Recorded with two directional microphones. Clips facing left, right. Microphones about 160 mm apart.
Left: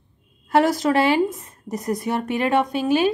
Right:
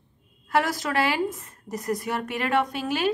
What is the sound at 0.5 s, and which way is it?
Speech, 25° left (ahead or behind).